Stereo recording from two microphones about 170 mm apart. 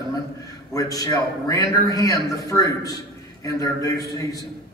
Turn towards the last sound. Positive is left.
turn(degrees=20)  # may be behind; listen again after turning